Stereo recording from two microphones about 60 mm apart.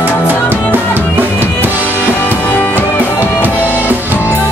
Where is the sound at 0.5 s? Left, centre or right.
Right.